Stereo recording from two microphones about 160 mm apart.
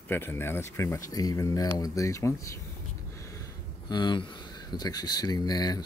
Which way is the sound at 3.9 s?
30° left (ahead or behind).